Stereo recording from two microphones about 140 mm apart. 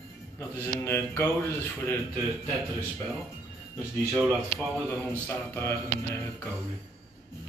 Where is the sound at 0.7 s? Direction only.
15° left (ahead or behind).